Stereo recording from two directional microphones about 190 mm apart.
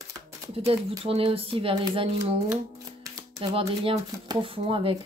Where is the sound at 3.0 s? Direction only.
20° right (ahead or behind).